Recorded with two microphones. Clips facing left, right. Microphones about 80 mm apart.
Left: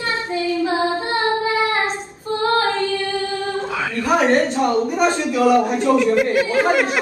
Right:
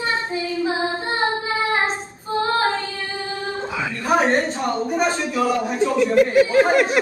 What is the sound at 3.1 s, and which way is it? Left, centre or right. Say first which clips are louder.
Singing: left 5 dB; right.